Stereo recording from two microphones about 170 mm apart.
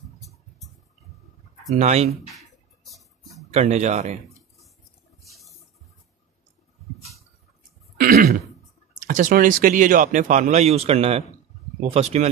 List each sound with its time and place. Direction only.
0.2 s a sound: centre (ahead or behind)
1.8 s speech: 40° right (ahead or behind)
2.0 s a sound: centre (ahead or behind)
3.5 s speech: 40° right (ahead or behind)
8.0 s throat clearing: 60° right (ahead or behind)
9.0 s speech: 50° right (ahead or behind)